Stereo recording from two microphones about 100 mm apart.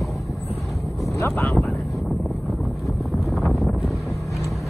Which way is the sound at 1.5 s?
Centre (ahead or behind).